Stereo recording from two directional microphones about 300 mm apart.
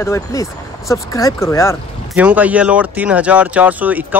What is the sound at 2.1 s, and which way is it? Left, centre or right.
A man's voice, centre.